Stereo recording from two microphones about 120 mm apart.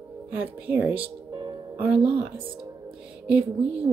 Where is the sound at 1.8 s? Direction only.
5° right (ahead or behind).